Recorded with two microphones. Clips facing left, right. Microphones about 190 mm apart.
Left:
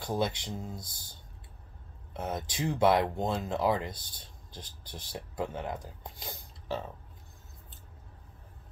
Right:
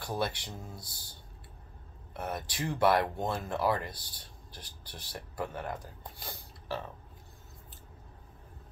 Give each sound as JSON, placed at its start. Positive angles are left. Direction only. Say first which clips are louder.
{"t": 0.0, "sound": "speech", "louder": "left 3 dB", "side_deg": 20}
{"t": 2.1, "sound": "speech", "louder": "left 2 dB", "side_deg": 20}